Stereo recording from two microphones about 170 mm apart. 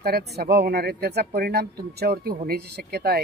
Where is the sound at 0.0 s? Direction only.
65° right (ahead or behind).